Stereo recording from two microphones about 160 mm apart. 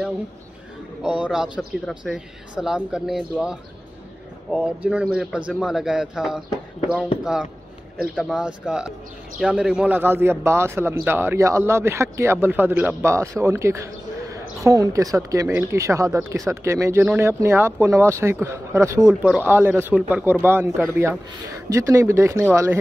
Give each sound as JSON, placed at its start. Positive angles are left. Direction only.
{"t": 1.0, "sound": "a man's voice", "side_deg": -5}
{"t": 8.0, "sound": "a man's voice", "side_deg": -5}